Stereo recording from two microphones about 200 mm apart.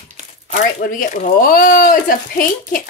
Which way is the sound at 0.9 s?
45° left (ahead or behind).